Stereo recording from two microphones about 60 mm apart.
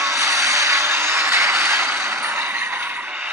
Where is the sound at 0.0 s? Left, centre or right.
Right.